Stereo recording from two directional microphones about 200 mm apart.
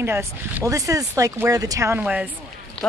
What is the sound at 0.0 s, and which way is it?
Speech, 10° right (ahead or behind).